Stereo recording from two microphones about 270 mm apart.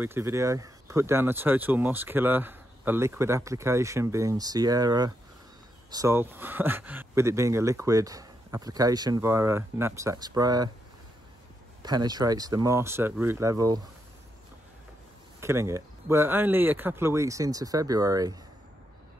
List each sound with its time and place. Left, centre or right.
0.0 s speech: centre
11.8 s speech: centre
15.4 s speech: centre